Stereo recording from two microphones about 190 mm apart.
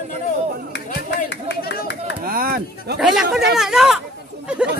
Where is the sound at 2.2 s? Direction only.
50° right (ahead or behind).